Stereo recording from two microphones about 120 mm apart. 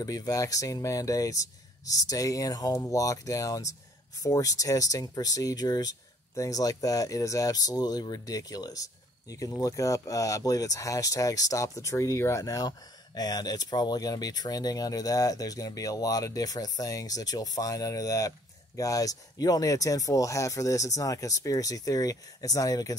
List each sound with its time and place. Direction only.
0.0 s speech: 30° left (ahead or behind)